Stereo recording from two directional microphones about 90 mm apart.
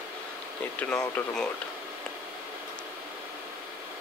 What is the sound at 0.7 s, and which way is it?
Speech, 15° left (ahead or behind).